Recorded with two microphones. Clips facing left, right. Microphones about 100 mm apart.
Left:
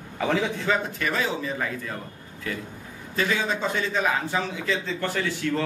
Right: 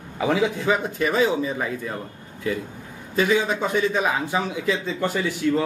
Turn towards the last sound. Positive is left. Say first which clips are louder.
# right 4 dB
turn(degrees=-15)  # may be behind; listen again after turning